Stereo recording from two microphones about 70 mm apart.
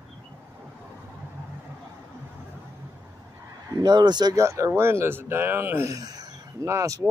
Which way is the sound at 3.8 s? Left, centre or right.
Right.